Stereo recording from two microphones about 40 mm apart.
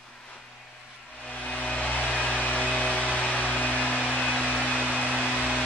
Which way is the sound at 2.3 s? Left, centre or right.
Left.